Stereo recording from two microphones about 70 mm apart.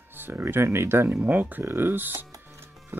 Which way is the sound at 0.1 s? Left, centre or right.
Right.